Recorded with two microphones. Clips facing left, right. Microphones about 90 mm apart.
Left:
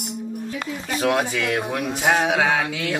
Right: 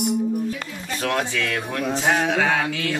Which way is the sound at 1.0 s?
10° left (ahead or behind).